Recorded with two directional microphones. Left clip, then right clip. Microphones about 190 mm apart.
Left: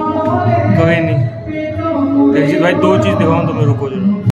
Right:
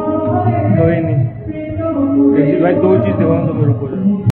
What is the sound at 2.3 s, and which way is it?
A man's voice, 30° left (ahead or behind).